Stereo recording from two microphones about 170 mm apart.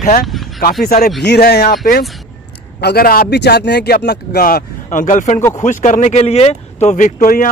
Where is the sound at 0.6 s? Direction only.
60° left (ahead or behind).